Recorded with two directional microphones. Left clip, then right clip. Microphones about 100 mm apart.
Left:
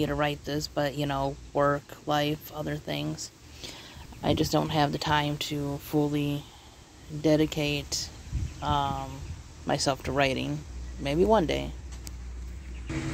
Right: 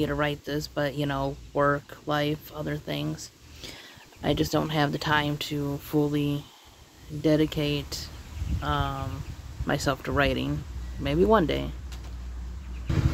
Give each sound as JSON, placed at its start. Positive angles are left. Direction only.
{"t": 0.0, "sound": "speech", "side_deg": -20}